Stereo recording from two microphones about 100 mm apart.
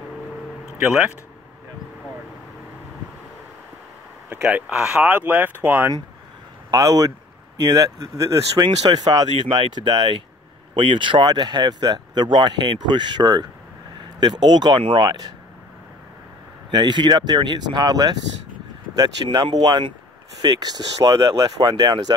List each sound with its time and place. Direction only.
0.7 s speech: 15° right (ahead or behind)
4.5 s speech: 10° right (ahead or behind)
6.7 s speech: 40° right (ahead or behind)
8.5 s speech: 50° right (ahead or behind)
16.7 s speech: 50° right (ahead or behind)